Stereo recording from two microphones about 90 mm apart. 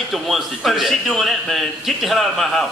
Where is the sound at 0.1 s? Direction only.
Centre (ahead or behind).